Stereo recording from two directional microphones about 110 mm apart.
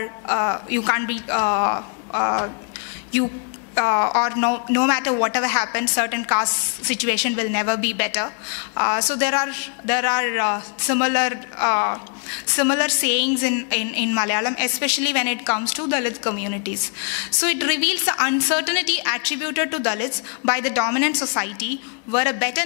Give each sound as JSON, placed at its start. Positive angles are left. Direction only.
{"t": 0.0, "sound": "a woman's voice", "side_deg": 15}
{"t": 3.7, "sound": "a woman's voice", "side_deg": 20}